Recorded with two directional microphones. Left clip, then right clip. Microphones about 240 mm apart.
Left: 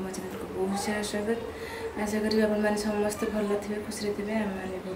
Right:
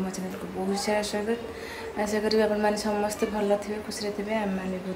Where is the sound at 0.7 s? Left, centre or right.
Centre.